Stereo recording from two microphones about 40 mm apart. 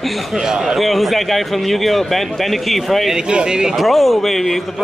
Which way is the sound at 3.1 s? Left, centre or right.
Centre.